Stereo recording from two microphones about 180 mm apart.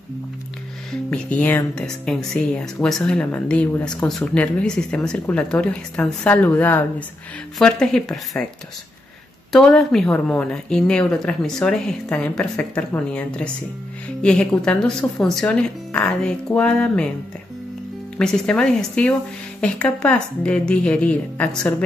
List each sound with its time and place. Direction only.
1.1 s speech: 5° left (ahead or behind)
9.5 s speech: 5° left (ahead or behind)
18.1 s speech: 5° left (ahead or behind)